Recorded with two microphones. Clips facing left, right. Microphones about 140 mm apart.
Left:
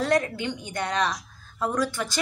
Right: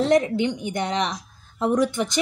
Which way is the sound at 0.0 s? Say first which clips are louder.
Right 5 dB; 20° right (ahead or behind).